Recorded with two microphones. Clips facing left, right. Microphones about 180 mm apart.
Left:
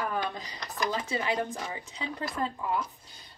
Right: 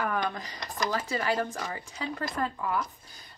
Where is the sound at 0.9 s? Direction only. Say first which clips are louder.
Right 2 dB; 20° left (ahead or behind).